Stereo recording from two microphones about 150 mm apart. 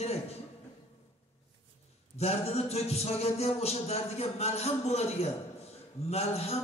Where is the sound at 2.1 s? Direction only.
45° left (ahead or behind).